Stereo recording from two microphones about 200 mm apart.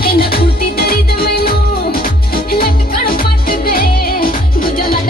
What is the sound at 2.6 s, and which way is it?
Music, 45° left (ahead or behind).